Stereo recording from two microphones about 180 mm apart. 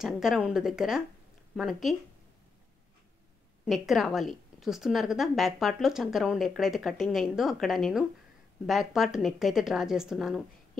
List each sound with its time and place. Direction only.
0.0 s a woman's voice: centre (ahead or behind)
3.6 s a woman's voice: centre (ahead or behind)